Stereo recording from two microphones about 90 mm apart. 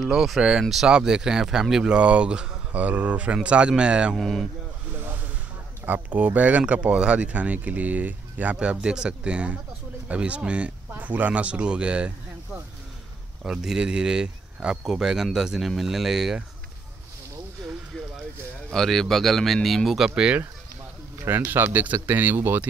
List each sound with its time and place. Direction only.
0.0 s speech: 5° right (ahead or behind)
4.2 s speech: centre (ahead or behind)
4.9 s a sound: 20° right (ahead or behind)
5.9 s speech: 20° right (ahead or behind)
13.4 s speech: 5° right (ahead or behind)
18.7 s speech: 5° left (ahead or behind)
21.5 s speech: 20° right (ahead or behind)